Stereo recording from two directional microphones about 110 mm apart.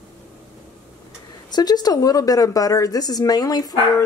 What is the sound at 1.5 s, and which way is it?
A woman's voice, 35° left (ahead or behind).